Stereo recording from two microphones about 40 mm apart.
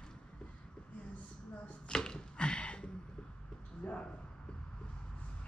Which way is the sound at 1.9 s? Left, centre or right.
Centre.